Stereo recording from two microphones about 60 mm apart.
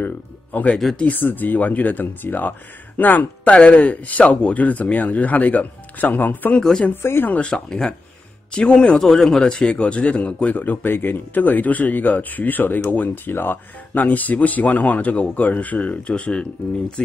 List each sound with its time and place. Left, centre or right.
0.0 s speech: left
7.0 s speech: left
7.2 s speech: centre